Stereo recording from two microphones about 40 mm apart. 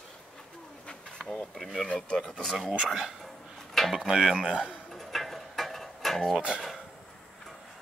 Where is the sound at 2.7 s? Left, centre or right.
Centre.